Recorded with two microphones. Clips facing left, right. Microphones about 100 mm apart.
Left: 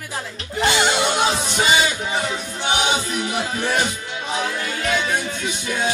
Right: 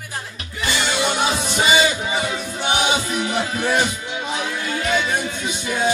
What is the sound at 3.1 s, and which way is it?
Music, 35° right (ahead or behind).